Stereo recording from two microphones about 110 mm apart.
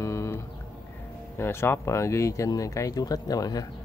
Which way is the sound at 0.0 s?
25° left (ahead or behind).